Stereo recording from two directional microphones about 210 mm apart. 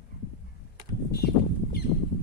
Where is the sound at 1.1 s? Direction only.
50° left (ahead or behind).